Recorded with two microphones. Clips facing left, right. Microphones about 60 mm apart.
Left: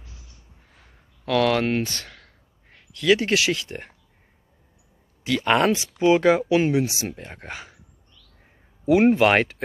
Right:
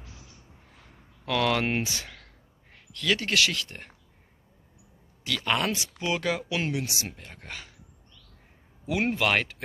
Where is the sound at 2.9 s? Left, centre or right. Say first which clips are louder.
Left 7 dB; centre.